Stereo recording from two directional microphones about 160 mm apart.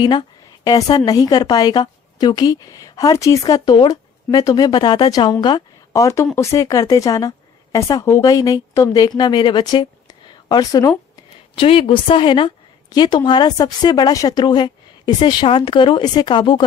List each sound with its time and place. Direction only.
0.7 s a woman's voice: 25° left (ahead or behind)
11.5 s a woman's voice: 35° left (ahead or behind)